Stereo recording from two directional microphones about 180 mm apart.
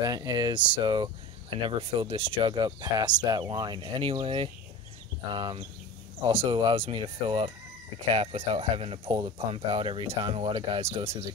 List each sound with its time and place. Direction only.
0.0 s speech: 25° right (ahead or behind)